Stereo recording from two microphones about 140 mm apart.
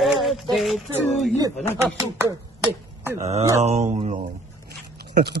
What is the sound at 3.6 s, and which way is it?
Speech, 50° right (ahead or behind).